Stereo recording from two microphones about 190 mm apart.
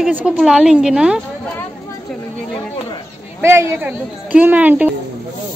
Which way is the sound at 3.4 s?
10° right (ahead or behind).